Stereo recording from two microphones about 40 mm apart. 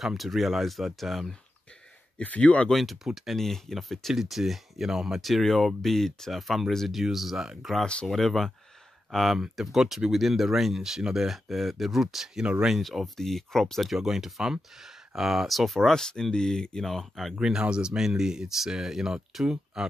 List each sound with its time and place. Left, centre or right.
0.0 s speech: centre
2.2 s speech: left
2.7 s speech: centre
4.1 s speech: centre
5.2 s speech: centre
7.8 s speech: left
8.1 s speech: centre
11.2 s speech: centre
13.8 s speech: centre
17.1 s speech: centre
17.4 s speech: centre